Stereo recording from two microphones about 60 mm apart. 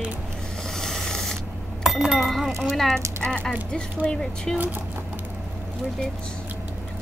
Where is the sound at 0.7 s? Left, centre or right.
Centre.